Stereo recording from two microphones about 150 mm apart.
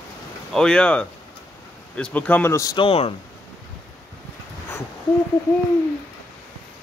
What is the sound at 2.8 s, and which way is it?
Speech, 35° left (ahead or behind).